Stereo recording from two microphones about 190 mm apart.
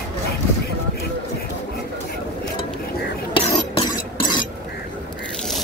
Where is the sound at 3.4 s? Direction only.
25° left (ahead or behind).